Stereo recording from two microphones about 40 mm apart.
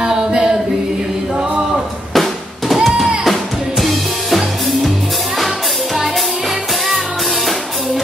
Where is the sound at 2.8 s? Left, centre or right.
Centre.